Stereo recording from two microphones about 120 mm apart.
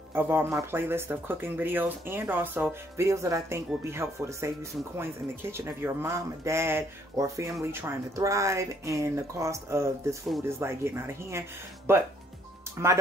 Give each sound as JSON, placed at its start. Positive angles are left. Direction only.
{"t": 0.1, "sound": "speech", "side_deg": -20}